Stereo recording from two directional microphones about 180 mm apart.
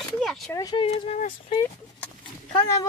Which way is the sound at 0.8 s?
35° left (ahead or behind).